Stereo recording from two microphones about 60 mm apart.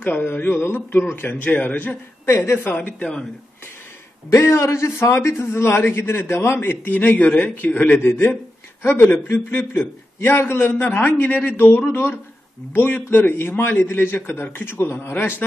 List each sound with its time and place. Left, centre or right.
0.0 s a man's voice: left
1.4 s a man's voice: left
2.2 s a woman's voice: left
2.6 s a man's voice: left
3.0 s speech: centre
4.3 s a man's voice: left
11.5 s a man's voice: left